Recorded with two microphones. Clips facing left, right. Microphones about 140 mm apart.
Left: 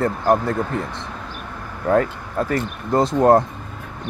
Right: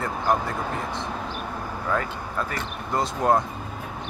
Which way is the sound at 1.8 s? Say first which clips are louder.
Left 10 dB; 55° left (ahead or behind).